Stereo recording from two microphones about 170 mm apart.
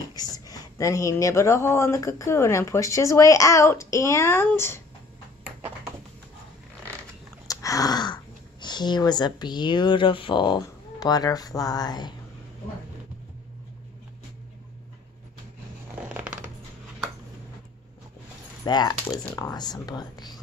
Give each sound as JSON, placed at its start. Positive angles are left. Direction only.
{"t": 0.1, "sound": "speech", "side_deg": 20}
{"t": 7.4, "sound": "speech", "side_deg": 20}
{"t": 16.1, "sound": "scissors", "side_deg": -5}
{"t": 18.6, "sound": "speech", "side_deg": 25}